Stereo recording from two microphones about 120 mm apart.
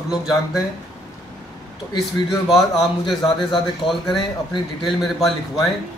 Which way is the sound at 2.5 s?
Centre (ahead or behind).